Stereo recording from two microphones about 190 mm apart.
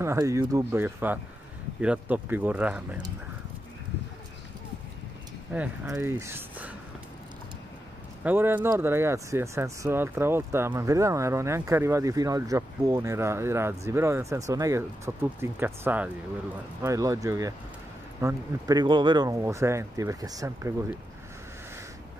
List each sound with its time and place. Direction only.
0.0 s speech: 15° right (ahead or behind)
5.5 s speech: 10° right (ahead or behind)
8.2 s speech: 10° right (ahead or behind)